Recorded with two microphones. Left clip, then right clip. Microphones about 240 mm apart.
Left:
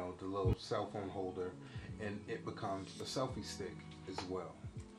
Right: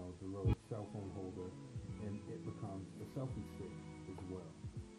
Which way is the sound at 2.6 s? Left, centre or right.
Left.